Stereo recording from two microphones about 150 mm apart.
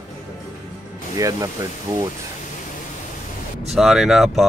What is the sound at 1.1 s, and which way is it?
Speech, 20° right (ahead or behind).